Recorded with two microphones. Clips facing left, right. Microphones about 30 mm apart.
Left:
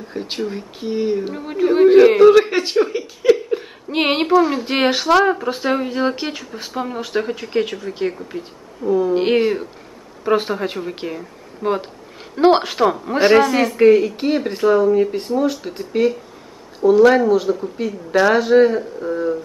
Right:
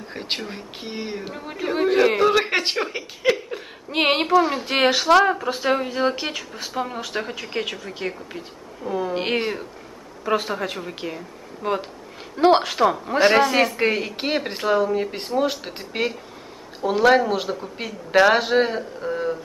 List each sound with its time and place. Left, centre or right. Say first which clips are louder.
0.1 s speech: even; right
0.4 s a woman's voice: left 8 dB; centre
1.2 s speech: left 9 dB; centre
2.4 s a woman's voice: left 5 dB; right
3.3 s a sound: left 7 dB; centre
3.5 s speech: left 4 dB; centre
8.8 s speech: left 8 dB; centre
10.2 s a woman's voice: left 5 dB; centre
13.4 s speech: left 4 dB; centre; by 16.2 s right
17.0 s a woman's voice: left 2 dB; centre
17.3 s speech: left 8 dB; right